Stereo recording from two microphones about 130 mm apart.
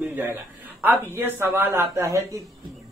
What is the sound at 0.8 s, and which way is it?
Speech, 15° right (ahead or behind).